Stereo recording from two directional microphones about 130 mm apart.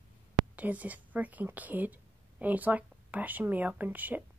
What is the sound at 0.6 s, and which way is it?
A woman's voice, 10° right (ahead or behind).